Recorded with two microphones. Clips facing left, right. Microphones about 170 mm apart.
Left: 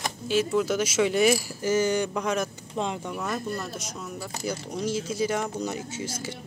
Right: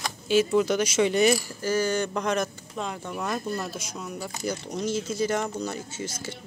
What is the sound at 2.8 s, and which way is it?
Speech, 25° left (ahead or behind).